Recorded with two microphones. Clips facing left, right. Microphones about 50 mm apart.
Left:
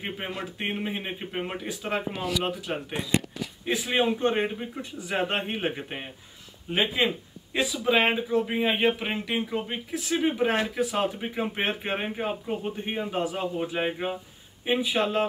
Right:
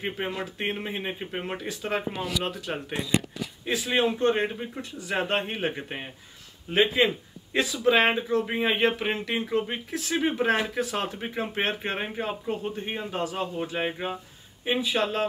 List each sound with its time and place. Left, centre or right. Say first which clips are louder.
0.0 s speech: right 2 dB; centre
14.8 s speech: left 1 dB; centre